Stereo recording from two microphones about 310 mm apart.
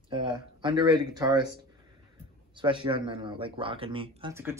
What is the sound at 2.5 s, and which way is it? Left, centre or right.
A man's voice, centre.